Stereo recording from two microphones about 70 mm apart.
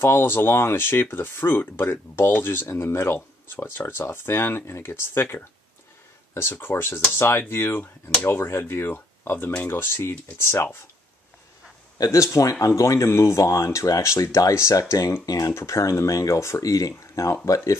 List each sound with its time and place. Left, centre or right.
0.0 s speech: left
12.0 s speech: left